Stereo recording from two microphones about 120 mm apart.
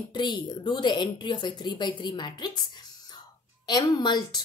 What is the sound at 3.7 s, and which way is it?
Speech, 35° left (ahead or behind).